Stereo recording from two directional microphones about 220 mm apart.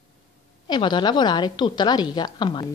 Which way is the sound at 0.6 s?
20° left (ahead or behind).